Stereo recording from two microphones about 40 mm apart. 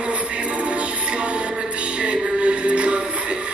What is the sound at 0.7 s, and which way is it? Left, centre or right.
Music, right.